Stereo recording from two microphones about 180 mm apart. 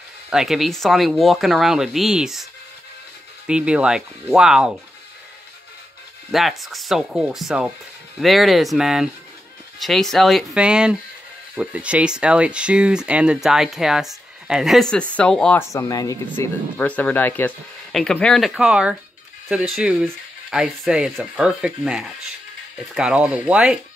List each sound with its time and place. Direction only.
0.3 s speech: centre (ahead or behind)
3.4 s speech: 5° right (ahead or behind)
6.3 s speech: centre (ahead or behind)
15.7 s speech: 20° left (ahead or behind)
16.7 s speech: 10° left (ahead or behind)